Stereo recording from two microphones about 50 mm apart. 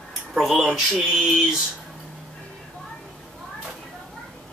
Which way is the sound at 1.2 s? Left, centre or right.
Centre.